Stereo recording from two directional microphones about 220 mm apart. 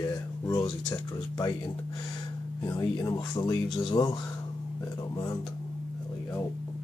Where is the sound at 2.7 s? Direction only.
15° left (ahead or behind).